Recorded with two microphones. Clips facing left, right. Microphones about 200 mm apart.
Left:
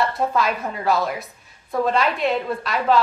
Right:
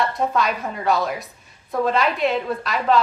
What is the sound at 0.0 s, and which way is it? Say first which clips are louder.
A woman's voice: even; centre (ahead or behind).